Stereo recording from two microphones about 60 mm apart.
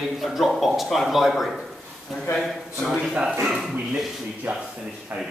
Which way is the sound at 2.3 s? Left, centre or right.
Left.